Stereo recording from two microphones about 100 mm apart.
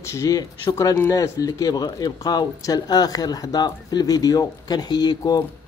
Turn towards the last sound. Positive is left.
turn(degrees=45)  # may be behind; listen again after turning